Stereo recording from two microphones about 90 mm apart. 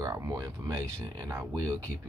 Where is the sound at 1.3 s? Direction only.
30° right (ahead or behind).